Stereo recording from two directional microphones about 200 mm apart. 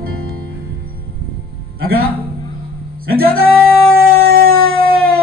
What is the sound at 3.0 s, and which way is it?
Music, 50° right (ahead or behind).